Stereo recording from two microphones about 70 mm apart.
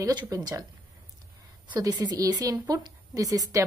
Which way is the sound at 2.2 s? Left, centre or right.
Right.